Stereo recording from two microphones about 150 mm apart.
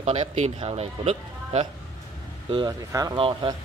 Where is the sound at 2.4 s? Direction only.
35° right (ahead or behind).